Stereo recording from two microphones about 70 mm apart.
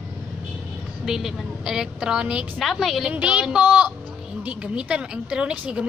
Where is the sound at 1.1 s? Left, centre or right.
Centre.